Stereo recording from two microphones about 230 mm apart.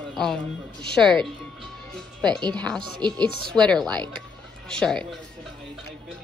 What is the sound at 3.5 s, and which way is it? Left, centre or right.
Speech, centre.